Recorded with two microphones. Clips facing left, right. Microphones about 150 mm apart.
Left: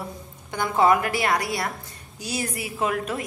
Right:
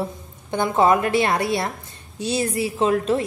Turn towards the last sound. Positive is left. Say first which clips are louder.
# right 7 dB
turn(degrees=-30)  # may be behind; listen again after turning